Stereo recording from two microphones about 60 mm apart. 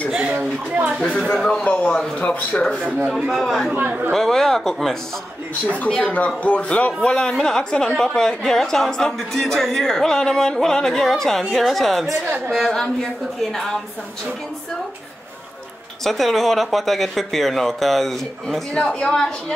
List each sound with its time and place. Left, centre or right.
1.4 s speech: centre
1.7 s speech: left
3.1 s speech: centre
3.7 s speech: centre
4.1 s speech: centre
5.9 s speech: centre
16.0 s speech: centre